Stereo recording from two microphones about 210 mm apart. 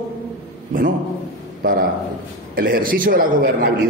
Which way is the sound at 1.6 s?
45° right (ahead or behind).